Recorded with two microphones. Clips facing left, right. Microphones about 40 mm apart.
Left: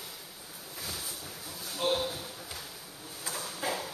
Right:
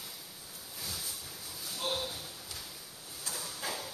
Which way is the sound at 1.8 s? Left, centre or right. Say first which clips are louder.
Left 6 dB; centre.